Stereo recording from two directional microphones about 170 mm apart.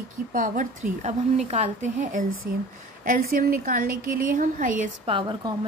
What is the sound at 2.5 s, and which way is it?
A woman's voice, 60° right (ahead or behind).